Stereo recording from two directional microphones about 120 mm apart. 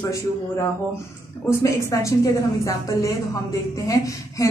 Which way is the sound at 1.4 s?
25° left (ahead or behind).